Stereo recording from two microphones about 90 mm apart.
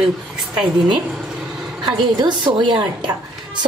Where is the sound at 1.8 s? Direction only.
55° right (ahead or behind).